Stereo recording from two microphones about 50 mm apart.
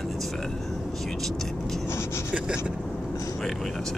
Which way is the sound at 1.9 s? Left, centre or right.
Left.